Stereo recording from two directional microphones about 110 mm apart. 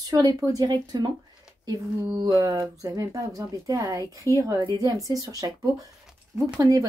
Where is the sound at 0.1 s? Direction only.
35° right (ahead or behind).